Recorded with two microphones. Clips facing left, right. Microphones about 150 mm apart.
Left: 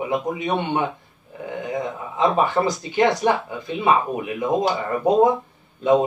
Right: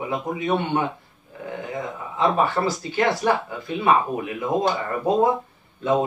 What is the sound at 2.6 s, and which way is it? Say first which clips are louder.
Speech: left 3 dB; 20° left (ahead or behind).